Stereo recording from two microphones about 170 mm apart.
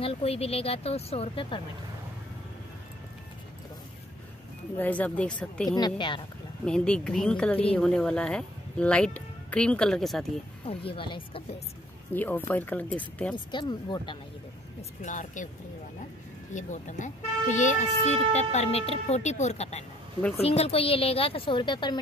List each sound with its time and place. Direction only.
0.0 s a woman's voice: 35° left (ahead or behind)
4.7 s speech: 10° left (ahead or behind)
5.7 s speech: 25° left (ahead or behind)
6.6 s speech: 5° left (ahead or behind)
10.6 s a woman's voice: 35° left (ahead or behind)
12.1 s speech: 10° left (ahead or behind)
13.5 s speech: 25° left (ahead or behind)
14.8 s speech: 45° left (ahead or behind)
16.5 s a woman's voice: 45° left (ahead or behind); by 22.0 s 25° left (ahead or behind)